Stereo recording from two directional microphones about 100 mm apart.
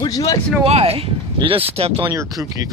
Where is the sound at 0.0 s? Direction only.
40° left (ahead or behind).